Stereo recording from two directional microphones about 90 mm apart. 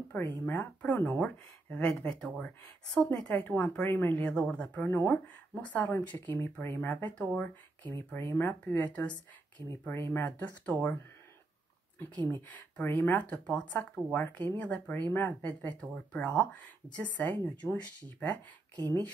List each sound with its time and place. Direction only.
0.1 s speech: 20° left (ahead or behind)
3.9 s speech: 25° left (ahead or behind)
4.2 s speech: 15° left (ahead or behind)
10.2 s speech: 15° left (ahead or behind)
12.0 s speech: 25° left (ahead or behind)